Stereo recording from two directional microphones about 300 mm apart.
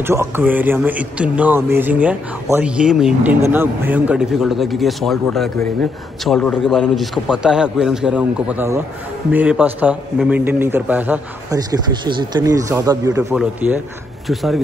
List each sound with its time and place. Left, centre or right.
0.0 s a man's voice: centre